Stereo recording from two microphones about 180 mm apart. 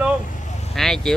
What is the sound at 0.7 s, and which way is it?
Speech, centre (ahead or behind).